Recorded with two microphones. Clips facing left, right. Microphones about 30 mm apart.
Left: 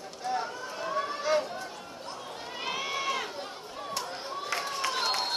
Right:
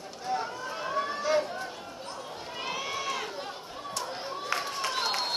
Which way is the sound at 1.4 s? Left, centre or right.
Centre.